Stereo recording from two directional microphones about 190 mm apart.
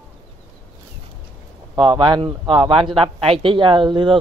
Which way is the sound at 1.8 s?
25° right (ahead or behind).